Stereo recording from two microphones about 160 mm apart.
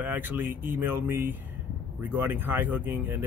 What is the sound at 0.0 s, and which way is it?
Speech, 10° right (ahead or behind).